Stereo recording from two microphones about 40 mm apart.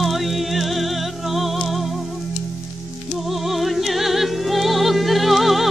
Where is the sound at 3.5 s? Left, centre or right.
Centre.